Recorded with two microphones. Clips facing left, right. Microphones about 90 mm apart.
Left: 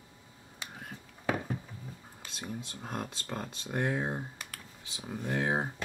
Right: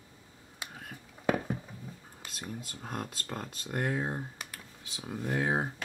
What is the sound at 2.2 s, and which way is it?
Speech, centre (ahead or behind).